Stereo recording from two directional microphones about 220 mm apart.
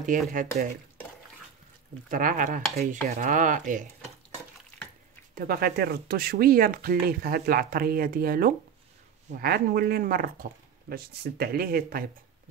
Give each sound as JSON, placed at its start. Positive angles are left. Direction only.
{"t": 0.1, "sound": "dishes", "side_deg": -35}
{"t": 2.0, "sound": "dishes", "side_deg": -40}
{"t": 5.3, "sound": "speech", "side_deg": -40}